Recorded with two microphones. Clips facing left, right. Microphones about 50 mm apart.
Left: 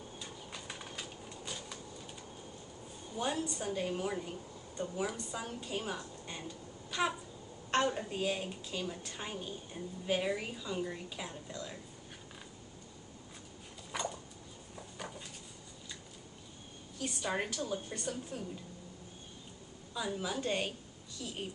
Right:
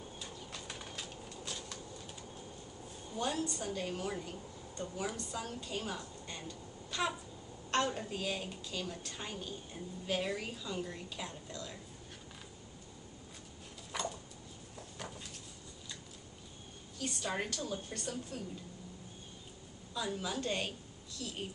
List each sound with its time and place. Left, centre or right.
0.2 s bird: centre
3.2 s a woman's voice: centre
13.9 s a sound: centre
14.8 s dishes: centre
17.0 s a woman's voice: centre
19.9 s a woman's voice: centre